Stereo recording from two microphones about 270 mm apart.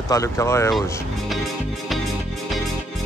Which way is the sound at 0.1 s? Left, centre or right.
Centre.